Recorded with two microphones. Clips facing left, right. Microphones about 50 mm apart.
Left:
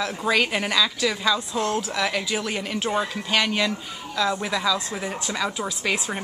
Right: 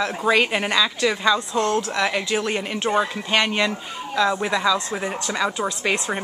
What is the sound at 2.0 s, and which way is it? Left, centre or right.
Speech, centre.